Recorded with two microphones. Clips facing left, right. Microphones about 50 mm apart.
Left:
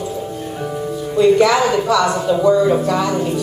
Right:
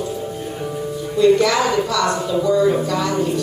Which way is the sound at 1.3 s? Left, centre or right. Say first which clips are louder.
Left 3 dB; centre.